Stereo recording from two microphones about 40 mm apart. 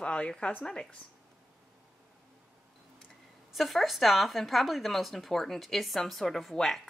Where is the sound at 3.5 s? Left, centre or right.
Centre.